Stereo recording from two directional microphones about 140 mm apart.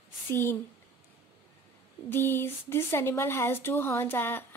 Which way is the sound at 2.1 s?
15° left (ahead or behind).